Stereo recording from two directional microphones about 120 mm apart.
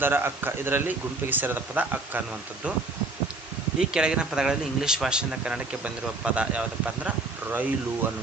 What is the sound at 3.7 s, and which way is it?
Speech, 5° right (ahead or behind).